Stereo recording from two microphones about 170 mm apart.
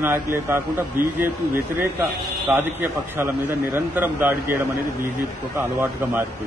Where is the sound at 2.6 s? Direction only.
10° right (ahead or behind).